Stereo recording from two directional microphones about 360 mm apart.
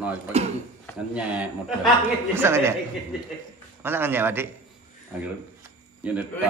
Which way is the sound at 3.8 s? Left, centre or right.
Centre.